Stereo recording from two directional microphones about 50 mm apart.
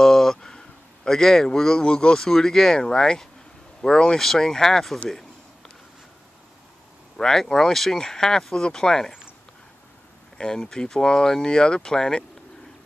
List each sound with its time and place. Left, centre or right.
0.0 s speech: centre
7.2 s speech: centre
10.3 s speech: centre